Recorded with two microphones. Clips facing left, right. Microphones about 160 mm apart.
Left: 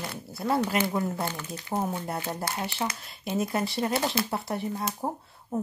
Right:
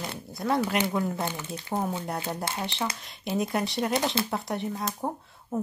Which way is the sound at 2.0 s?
5° left (ahead or behind).